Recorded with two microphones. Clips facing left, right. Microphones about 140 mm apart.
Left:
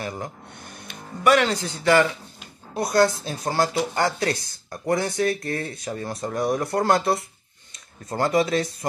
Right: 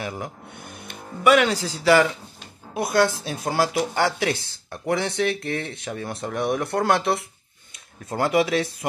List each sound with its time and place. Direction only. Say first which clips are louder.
0.0 s speech: even; 5° right (ahead or behind)